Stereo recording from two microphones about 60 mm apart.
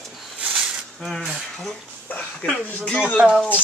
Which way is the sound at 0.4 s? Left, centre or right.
Centre.